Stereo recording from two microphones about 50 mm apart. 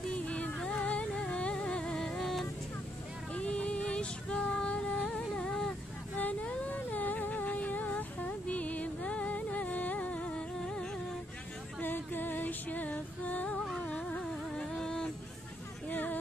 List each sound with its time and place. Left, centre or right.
0.1 s music: left; by 2.4 s centre
3.3 s music: left
6.1 s humming: left
10.6 s music: centre
11.8 s music: left
14.5 s a sound: centre
15.9 s a sound: left